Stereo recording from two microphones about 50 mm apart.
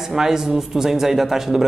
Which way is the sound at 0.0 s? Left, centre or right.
Centre.